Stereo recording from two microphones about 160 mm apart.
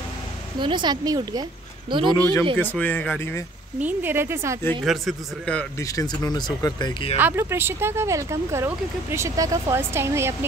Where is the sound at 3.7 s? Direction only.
10° right (ahead or behind).